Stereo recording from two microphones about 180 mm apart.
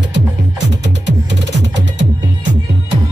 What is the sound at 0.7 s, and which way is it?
Music, 80° right.